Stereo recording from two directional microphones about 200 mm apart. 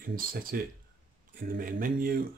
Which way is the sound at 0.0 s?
45° right (ahead or behind).